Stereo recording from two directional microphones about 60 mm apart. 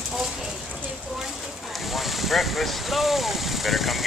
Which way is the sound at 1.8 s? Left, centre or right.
Centre.